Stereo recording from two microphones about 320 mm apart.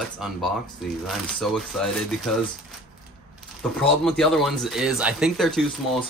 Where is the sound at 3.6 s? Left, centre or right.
Centre.